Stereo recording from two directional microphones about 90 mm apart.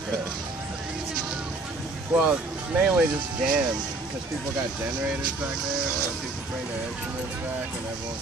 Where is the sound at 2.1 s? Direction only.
15° right (ahead or behind).